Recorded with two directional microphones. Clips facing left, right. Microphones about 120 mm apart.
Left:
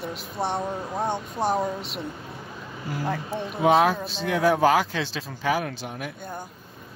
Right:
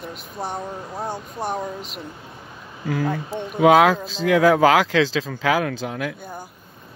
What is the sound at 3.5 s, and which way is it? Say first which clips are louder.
Speech: right 5 dB; 90° right.